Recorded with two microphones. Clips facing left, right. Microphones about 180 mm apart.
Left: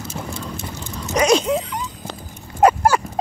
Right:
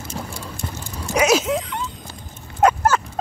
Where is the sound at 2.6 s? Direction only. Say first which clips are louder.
Left 2 dB; 10° left (ahead or behind).